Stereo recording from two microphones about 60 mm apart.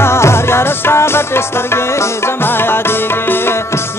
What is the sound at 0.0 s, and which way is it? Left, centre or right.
Music, left.